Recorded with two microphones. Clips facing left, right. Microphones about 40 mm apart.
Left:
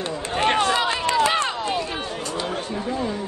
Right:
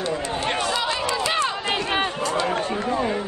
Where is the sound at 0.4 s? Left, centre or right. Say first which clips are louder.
Left 9 dB; left.